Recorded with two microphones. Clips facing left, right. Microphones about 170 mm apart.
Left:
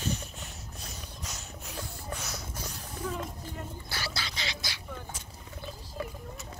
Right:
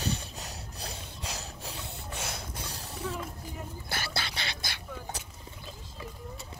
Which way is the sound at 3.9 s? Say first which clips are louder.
Right 4 dB; 55° right (ahead or behind).